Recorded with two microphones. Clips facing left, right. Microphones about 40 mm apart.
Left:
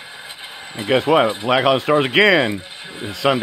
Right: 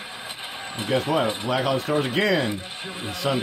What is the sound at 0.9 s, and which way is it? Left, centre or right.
Speech, left.